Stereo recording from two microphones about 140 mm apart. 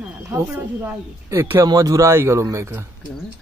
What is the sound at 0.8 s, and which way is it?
Speech, 20° right (ahead or behind).